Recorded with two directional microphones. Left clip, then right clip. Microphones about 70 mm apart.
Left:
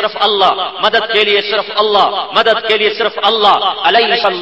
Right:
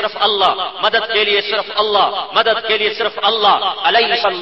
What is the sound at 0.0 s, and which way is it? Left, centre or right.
A man's voice, left.